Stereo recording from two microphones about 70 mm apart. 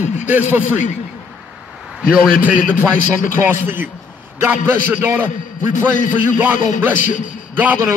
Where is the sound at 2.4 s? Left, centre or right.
Right.